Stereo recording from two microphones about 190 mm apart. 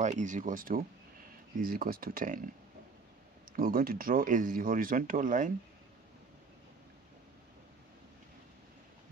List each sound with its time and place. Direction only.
0.0 s speech: 40° right (ahead or behind)
3.5 s speech: 45° right (ahead or behind)